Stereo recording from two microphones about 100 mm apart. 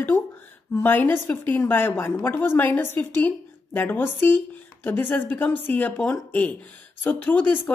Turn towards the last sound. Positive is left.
turn(degrees=15)  # may be behind; listen again after turning